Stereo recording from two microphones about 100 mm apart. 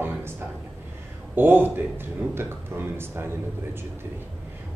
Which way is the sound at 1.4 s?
20° right (ahead or behind).